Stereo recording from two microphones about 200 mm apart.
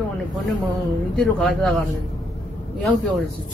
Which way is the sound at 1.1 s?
5° left (ahead or behind).